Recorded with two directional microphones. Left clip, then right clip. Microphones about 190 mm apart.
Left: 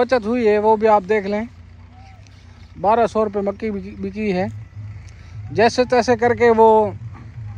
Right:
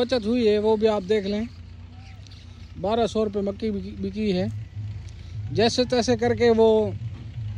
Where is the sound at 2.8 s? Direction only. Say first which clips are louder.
Left 7 dB; 30° left (ahead or behind).